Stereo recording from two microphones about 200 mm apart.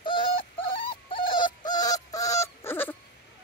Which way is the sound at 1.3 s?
20° left (ahead or behind).